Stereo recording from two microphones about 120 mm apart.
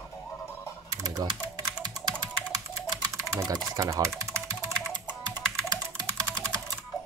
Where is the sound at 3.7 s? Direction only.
25° right (ahead or behind).